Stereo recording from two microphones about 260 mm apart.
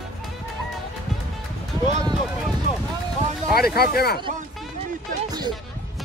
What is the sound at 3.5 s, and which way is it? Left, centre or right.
Speech, left.